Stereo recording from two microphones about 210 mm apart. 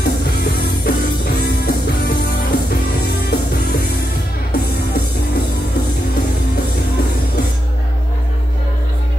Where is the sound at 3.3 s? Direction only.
50° left (ahead or behind).